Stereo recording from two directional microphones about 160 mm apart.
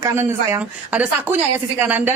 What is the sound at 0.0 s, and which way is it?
Speech, 15° right (ahead or behind).